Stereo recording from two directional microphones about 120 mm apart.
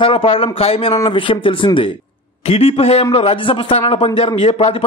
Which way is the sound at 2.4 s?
55° left (ahead or behind).